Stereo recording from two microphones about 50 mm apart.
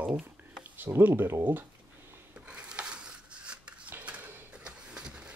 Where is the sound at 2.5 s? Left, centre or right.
Right.